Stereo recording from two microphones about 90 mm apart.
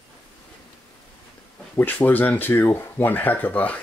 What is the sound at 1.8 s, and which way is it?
Speech, 20° left (ahead or behind).